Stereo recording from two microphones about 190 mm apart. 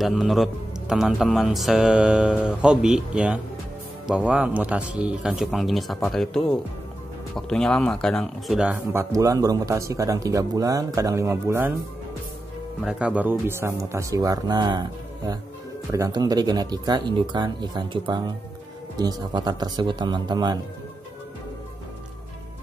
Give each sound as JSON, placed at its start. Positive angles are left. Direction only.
{"t": 0.0, "sound": "speech", "side_deg": 0}
{"t": 12.8, "sound": "speech", "side_deg": -5}